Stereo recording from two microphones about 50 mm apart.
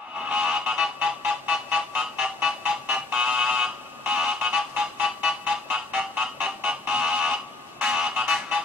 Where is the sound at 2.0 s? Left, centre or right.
Centre.